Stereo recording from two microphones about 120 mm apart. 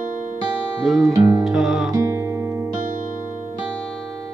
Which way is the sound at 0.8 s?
Centre (ahead or behind).